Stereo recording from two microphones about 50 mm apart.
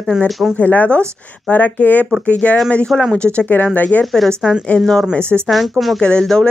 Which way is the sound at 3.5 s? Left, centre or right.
Left.